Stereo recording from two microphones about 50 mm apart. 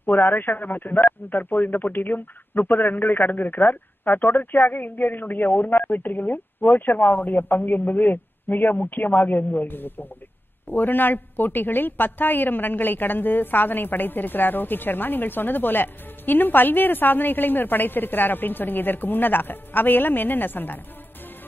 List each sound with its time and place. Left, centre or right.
0.0 s a woman's voice: left